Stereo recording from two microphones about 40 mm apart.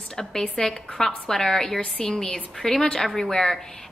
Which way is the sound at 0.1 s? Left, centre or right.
Centre.